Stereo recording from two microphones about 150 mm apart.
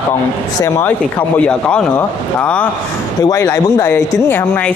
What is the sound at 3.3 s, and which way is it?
Speech, 25° left (ahead or behind).